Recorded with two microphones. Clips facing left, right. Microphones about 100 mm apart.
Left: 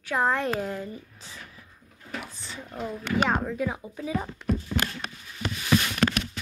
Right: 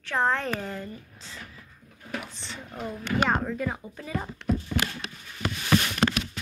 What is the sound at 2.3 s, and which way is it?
Speech, 5° left (ahead or behind).